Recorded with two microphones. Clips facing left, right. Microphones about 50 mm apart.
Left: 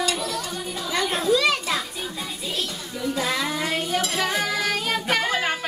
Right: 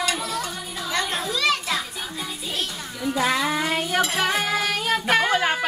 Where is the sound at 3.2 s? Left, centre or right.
Right.